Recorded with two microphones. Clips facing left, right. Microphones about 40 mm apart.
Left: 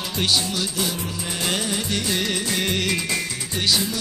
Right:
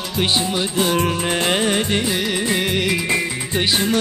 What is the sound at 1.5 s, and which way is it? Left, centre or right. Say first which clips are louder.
Music: right 5 dB; right.